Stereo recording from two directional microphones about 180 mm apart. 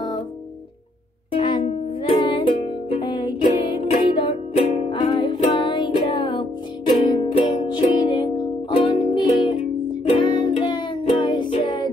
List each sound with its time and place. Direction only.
1.3 s music: 30° left (ahead or behind)